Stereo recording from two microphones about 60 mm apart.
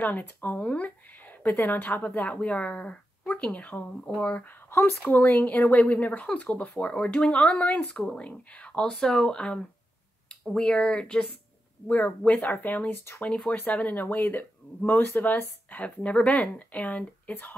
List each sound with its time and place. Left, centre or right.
0.0 s speech: left
4.5 s a sound: left
5.1 s speech: left
8.9 s speech: centre
12.3 s speech: left